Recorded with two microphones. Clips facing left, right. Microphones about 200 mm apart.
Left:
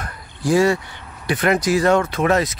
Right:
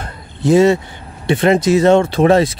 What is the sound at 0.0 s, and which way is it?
A man's voice, 25° right (ahead or behind).